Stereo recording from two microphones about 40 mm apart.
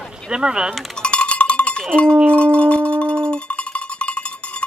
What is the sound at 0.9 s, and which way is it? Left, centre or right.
Cowbell, left.